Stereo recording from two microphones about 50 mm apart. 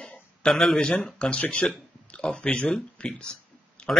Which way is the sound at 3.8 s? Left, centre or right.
Left.